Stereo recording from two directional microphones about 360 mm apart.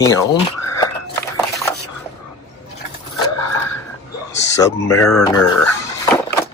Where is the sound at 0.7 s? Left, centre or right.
Centre.